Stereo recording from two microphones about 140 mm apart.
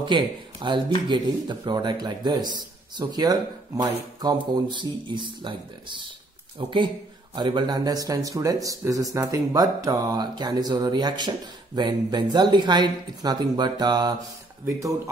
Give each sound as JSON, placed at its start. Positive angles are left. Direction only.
{"t": 0.0, "sound": "speech", "side_deg": -35}
{"t": 7.3, "sound": "speech", "side_deg": -30}